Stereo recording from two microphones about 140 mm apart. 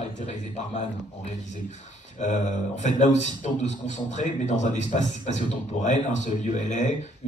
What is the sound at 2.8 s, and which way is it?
A man's voice, 55° left (ahead or behind).